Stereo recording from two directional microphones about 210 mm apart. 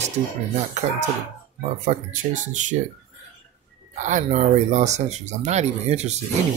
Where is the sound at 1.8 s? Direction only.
35° right (ahead or behind).